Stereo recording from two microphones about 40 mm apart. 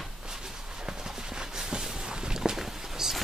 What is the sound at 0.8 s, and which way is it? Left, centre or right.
Clip-clop, centre.